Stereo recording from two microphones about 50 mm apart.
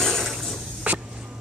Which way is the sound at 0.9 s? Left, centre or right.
Right.